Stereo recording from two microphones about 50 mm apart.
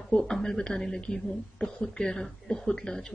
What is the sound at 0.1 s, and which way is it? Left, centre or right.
Speech, centre.